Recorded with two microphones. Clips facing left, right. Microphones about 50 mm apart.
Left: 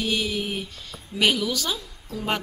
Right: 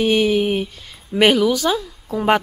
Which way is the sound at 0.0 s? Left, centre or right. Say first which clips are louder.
Right 10 dB; right.